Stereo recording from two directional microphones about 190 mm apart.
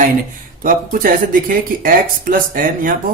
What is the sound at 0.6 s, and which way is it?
Speech, 45° right (ahead or behind).